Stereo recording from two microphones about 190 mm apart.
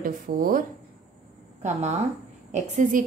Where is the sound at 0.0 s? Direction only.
45° right (ahead or behind).